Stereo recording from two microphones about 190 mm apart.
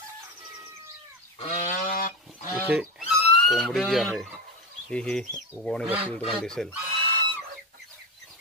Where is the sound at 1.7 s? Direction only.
45° left (ahead or behind).